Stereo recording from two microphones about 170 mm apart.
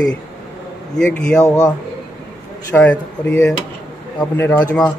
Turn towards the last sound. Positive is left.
turn(degrees=10)  # may be behind; listen again after turning